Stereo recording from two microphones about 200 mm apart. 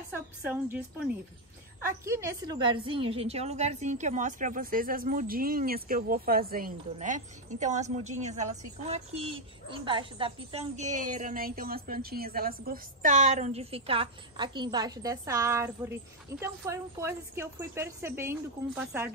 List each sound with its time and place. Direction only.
0.7 s a woman's voice: 5° right (ahead or behind)